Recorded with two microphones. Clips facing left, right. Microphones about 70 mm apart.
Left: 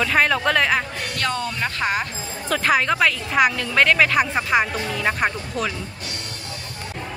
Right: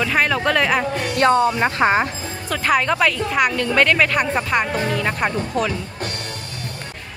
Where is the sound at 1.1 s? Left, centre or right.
Right.